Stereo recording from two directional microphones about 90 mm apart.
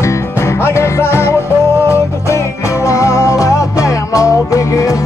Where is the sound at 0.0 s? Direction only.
30° left (ahead or behind).